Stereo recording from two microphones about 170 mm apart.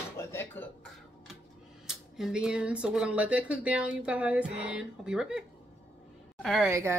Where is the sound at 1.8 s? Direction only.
Centre (ahead or behind).